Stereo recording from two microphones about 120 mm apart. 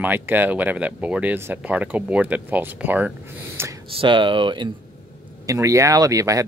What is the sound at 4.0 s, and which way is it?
Speech, 45° right (ahead or behind).